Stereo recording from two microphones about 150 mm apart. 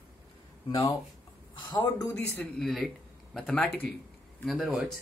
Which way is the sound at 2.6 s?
Centre (ahead or behind).